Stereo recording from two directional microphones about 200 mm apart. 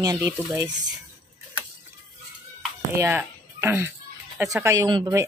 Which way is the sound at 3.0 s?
10° right (ahead or behind).